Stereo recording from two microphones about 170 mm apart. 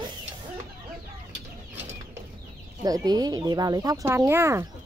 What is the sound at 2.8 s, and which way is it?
Speech, 20° right (ahead or behind).